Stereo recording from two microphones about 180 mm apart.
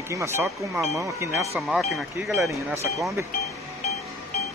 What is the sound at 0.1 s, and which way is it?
Speech, 15° right (ahead or behind).